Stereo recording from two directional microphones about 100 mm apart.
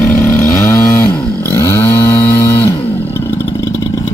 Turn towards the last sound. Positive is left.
turn(degrees=25)  # may be behind; listen again after turning